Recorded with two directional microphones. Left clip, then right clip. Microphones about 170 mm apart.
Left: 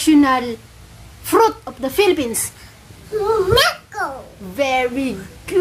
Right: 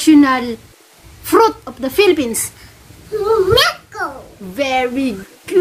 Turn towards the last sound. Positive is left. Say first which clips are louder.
# right 3 dB
turn(degrees=-25)  # may be behind; listen again after turning